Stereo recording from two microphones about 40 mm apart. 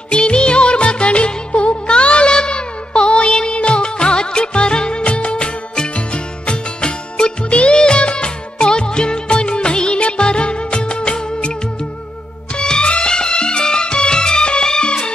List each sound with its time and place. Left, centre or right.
0.1 s music: left
12.5 s music: left